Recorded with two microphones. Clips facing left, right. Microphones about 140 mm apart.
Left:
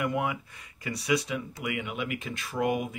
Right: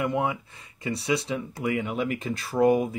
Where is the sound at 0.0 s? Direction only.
25° right (ahead or behind).